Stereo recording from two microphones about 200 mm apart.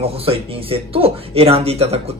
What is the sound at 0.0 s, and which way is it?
Speech, 30° right (ahead or behind).